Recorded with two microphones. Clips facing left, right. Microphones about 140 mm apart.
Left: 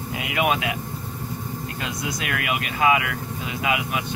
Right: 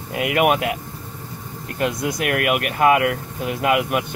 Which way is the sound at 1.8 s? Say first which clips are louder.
Right 10 dB; 55° right (ahead or behind).